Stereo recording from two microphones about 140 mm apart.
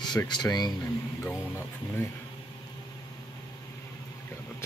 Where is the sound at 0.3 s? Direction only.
30° left (ahead or behind).